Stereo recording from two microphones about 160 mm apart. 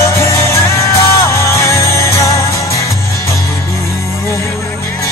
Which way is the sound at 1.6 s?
20° left (ahead or behind).